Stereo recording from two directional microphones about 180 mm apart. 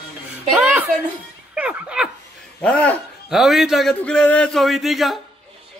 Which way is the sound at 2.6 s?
5° left (ahead or behind).